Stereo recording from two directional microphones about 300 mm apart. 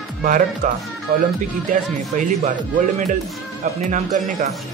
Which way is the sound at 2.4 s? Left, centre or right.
Right.